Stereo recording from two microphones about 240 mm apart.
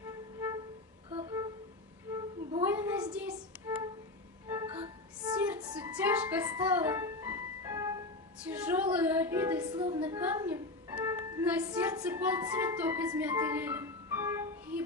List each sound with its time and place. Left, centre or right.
0.0 s music: centre
2.7 s music: centre
4.5 s music: centre
5.3 s music: centre
8.5 s female singing: centre
10.0 s music: centre